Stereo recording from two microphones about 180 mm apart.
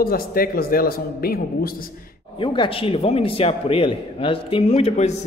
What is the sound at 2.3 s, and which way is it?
A man's voice, 30° left (ahead or behind).